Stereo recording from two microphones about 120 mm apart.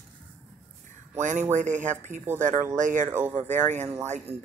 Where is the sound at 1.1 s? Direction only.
90° right.